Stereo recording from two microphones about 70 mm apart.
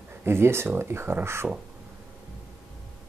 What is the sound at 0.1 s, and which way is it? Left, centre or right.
Speech, right.